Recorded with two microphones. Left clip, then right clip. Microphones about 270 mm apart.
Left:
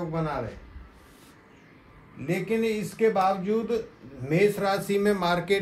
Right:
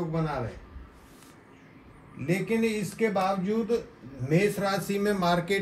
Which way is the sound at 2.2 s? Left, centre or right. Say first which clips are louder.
Left 1 dB; centre.